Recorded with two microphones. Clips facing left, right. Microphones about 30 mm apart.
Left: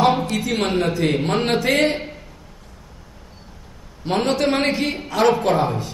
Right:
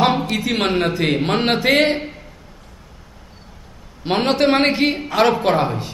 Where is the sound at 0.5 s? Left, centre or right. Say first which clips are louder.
Right 2 dB; right.